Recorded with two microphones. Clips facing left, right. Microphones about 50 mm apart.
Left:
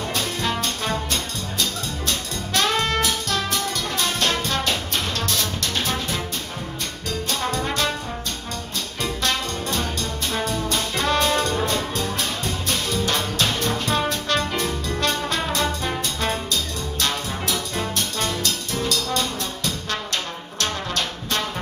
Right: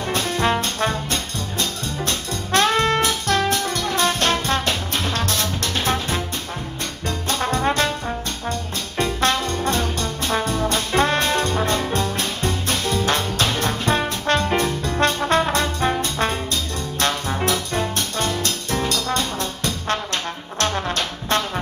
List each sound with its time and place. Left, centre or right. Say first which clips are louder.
0.1 s brass instrument: right 7 dB; right
1.6 s music: right 1 dB; right
7.2 s trombone: right 5 dB; right
8.9 s trombone: right 5 dB; right
13.6 s music: right 2 dB; right
17.0 s music: right 5 dB; right